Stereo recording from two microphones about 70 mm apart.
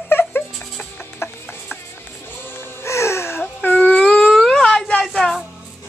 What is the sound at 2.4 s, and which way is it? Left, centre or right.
Music, left.